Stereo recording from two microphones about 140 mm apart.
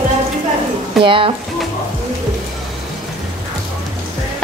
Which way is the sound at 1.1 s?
40° right (ahead or behind).